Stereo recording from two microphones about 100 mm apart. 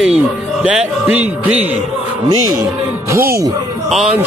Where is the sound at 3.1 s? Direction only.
25° right (ahead or behind).